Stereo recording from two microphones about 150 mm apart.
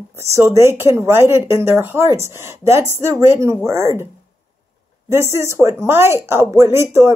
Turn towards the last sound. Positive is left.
turn(degrees=-15)  # may be behind; listen again after turning